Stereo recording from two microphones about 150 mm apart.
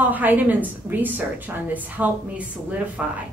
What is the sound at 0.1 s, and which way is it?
A woman's voice, 10° right (ahead or behind).